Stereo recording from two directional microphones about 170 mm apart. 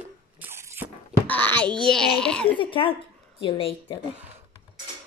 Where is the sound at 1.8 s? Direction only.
5° left (ahead or behind).